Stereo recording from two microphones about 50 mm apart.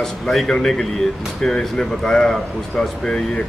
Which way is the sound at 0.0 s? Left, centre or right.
Centre.